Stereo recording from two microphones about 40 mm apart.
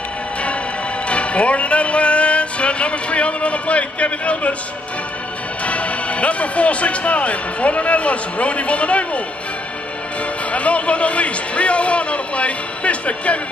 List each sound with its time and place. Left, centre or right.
1.0 s music: left
5.7 s speech: left
10.5 s a man's voice: left